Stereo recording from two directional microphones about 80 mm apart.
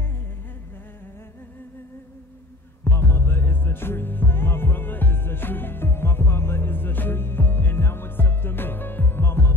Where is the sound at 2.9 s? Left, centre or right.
Left.